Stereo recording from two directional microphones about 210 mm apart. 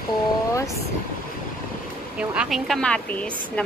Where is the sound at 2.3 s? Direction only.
Centre (ahead or behind).